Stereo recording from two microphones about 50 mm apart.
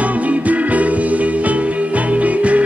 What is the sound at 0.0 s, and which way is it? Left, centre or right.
Music, right.